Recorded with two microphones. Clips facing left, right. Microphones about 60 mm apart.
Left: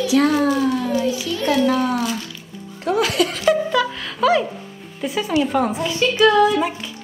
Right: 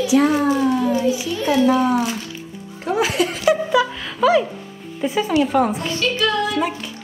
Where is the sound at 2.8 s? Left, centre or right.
Centre.